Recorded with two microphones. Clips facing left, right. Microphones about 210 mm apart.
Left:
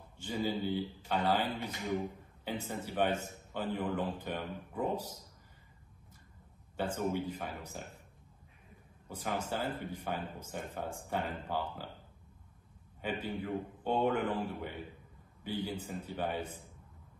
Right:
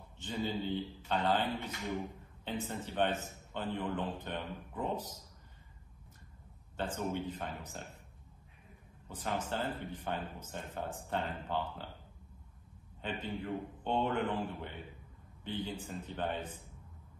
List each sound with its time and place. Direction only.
0.2 s speech: 10° left (ahead or behind)
2.4 s speech: 10° left (ahead or behind)
6.8 s speech: 10° left (ahead or behind)
9.1 s speech: 10° left (ahead or behind)
13.0 s speech: 10° left (ahead or behind)